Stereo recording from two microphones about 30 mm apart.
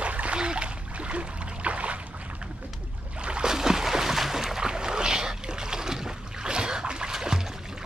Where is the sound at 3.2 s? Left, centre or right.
Right.